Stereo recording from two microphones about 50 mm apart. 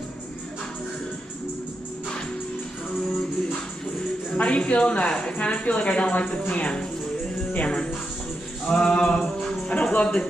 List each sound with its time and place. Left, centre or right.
4.4 s speech: left
8.6 s music: centre
9.7 s speech: left